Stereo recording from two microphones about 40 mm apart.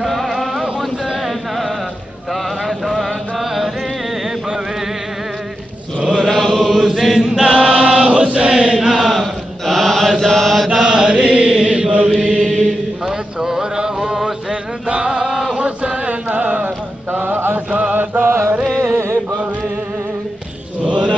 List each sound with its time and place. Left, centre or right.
0.0 s a sound: centre
2.6 s chant: centre
6.2 s chant: centre
6.9 s choir: centre
7.9 s chant: right
9.1 s mantra: centre
10.7 s mantra: centre
11.2 s chant: right
12.4 s chant: left
13.0 s a sound: centre; by 16.7 s right
17.1 s mantra: right
17.6 s mantra: right
17.9 s mantra: right
20.8 s chant: right